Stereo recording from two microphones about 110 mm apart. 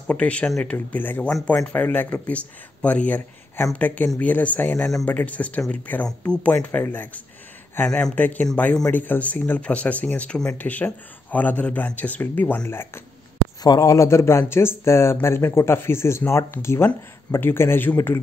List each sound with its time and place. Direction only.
0.0 s speech: 10° left (ahead or behind)
0.7 s speech: 15° left (ahead or behind)
1.3 s speech: 5° left (ahead or behind); by 13.0 s 20° left (ahead or behind)
13.6 s speech: 35° left (ahead or behind)